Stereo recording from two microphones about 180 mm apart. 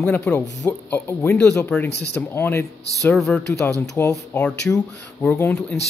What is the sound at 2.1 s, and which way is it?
Speech, 10° left (ahead or behind).